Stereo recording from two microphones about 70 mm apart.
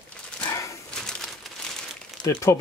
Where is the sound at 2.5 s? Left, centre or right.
Left.